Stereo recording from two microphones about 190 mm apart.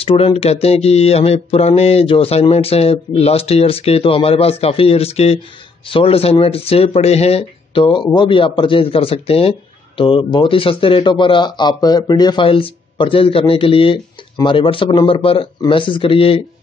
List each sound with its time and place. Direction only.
0.0 s mantra: 30° left (ahead or behind)
5.9 s speech: 30° left (ahead or behind)